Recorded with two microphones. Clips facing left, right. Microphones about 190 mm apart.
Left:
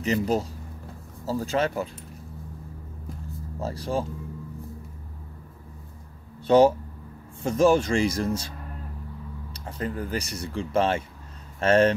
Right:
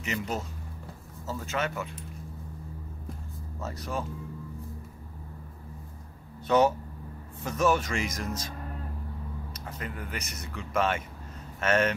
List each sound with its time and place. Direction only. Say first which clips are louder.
0.0 s speech: left 8 dB; 35° left (ahead or behind)
3.5 s speech: left 6 dB; 30° left (ahead or behind)
6.4 s speech: left 6 dB; 30° left (ahead or behind)